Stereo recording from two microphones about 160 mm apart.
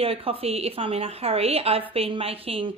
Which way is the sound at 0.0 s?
35° right (ahead or behind).